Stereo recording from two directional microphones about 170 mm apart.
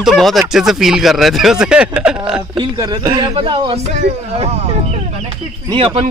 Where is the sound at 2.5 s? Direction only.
25° right (ahead or behind).